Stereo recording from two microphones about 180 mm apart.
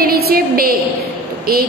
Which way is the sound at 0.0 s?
55° right (ahead or behind).